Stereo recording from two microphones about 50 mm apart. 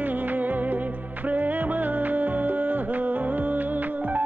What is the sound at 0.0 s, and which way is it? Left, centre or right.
Music, right.